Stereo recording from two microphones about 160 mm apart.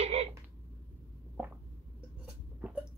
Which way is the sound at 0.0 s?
40° right (ahead or behind).